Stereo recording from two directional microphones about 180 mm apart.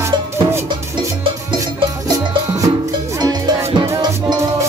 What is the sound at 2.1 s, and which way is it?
Music, 20° right (ahead or behind).